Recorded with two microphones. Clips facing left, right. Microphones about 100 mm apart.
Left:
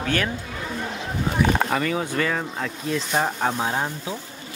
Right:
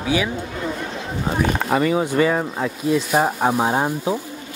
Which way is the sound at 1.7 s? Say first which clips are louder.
Right 5 dB; 15° right (ahead or behind).